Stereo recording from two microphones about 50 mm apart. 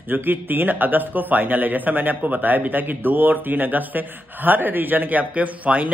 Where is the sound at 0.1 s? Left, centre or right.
Right.